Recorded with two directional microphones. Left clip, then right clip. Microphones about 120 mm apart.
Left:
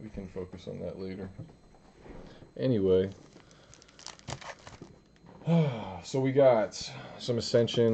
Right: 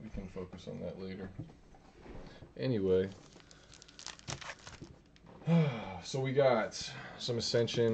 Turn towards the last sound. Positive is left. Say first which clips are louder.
# left 5 dB
turn(degrees=5)  # may be behind; listen again after turning